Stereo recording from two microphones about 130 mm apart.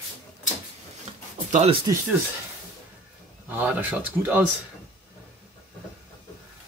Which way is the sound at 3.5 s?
15° right (ahead or behind).